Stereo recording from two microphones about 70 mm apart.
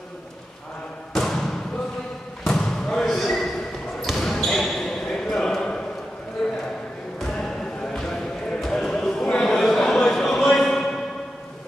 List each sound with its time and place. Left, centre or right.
1.1 s basketball bounce: centre
2.4 s basketball bounce: centre
7.2 s a sound: centre